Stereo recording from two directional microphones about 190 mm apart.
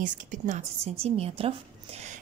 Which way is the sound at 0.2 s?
40° right (ahead or behind).